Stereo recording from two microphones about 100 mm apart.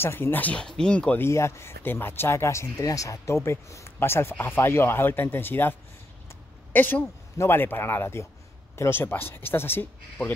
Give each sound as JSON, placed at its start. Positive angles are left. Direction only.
{"t": 0.0, "sound": "speech", "side_deg": 25}
{"t": 1.1, "sound": "speech", "side_deg": 25}